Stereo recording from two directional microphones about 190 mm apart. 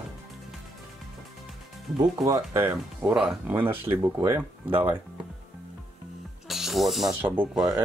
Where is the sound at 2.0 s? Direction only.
15° right (ahead or behind).